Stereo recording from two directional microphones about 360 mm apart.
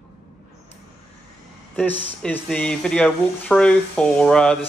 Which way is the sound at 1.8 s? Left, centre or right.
Centre.